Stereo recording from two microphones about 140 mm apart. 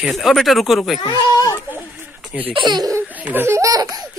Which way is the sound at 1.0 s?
25° left (ahead or behind).